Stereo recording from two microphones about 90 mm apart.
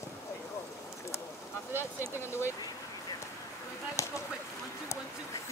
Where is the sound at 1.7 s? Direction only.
25° right (ahead or behind).